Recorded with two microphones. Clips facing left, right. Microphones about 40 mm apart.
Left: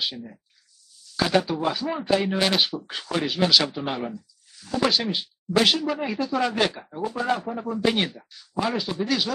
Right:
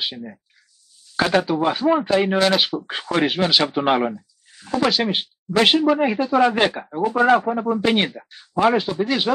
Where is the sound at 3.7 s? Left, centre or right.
Right.